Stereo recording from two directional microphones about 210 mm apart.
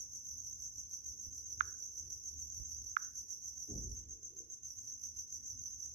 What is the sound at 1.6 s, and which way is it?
Cricket, 40° right (ahead or behind).